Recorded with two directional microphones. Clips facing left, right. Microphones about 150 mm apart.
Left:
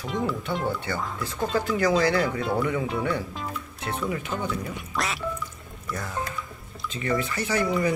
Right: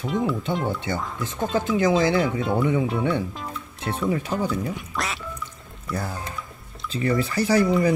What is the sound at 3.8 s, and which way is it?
Speech, 30° right (ahead or behind).